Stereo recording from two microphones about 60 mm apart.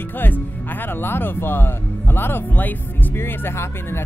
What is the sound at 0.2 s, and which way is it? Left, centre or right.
Speech, left.